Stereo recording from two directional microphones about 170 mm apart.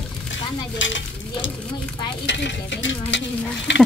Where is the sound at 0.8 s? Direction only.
90° left.